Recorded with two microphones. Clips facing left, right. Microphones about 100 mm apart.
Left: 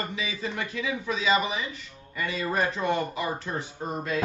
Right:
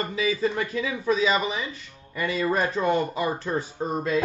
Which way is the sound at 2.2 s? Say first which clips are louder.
Right 3 dB; 40° right (ahead or behind).